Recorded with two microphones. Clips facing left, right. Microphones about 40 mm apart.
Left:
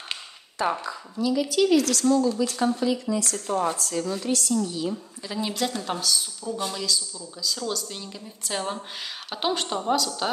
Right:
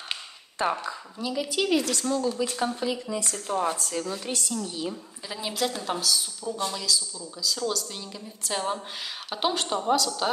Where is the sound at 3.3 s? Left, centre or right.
Centre.